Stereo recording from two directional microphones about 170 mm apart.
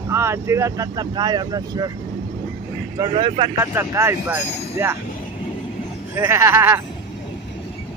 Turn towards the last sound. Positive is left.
turn(degrees=-15)  # may be behind; listen again after turning